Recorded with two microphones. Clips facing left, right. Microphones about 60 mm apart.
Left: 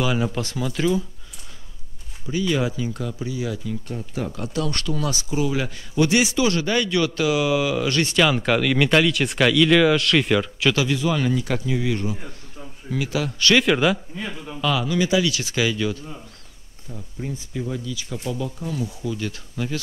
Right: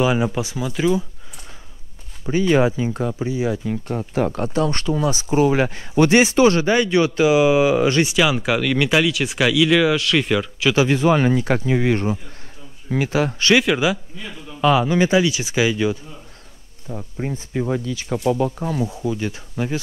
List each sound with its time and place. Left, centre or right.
0.0 s speech: right
2.2 s speech: right
3.7 s speech: right
4.6 s a man's voice: right
5.3 s a man's voice: right
8.0 s speech: centre
10.9 s speech: right
13.6 s speech: centre
14.1 s a man's voice: centre
14.6 s a man's voice: right
16.9 s speech: right
18.9 s a man's voice: right